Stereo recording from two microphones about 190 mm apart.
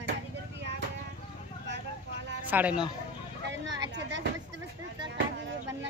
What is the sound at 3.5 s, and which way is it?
Speech, 75° right (ahead or behind).